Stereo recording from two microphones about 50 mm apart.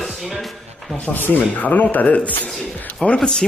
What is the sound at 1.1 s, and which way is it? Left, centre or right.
Speech, left.